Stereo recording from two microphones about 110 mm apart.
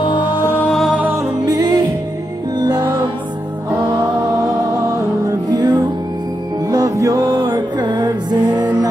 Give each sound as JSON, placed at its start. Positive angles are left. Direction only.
{"t": 0.0, "sound": "music", "side_deg": 50}
{"t": 0.7, "sound": "music", "side_deg": -5}
{"t": 1.4, "sound": "music", "side_deg": -35}
{"t": 5.5, "sound": "music", "side_deg": -40}
{"t": 6.7, "sound": "music", "side_deg": -30}